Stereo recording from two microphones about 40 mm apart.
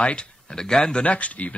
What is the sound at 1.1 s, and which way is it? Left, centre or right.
Speech, left.